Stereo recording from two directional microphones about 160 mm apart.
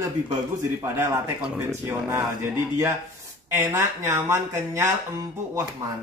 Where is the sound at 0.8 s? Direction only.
15° right (ahead or behind).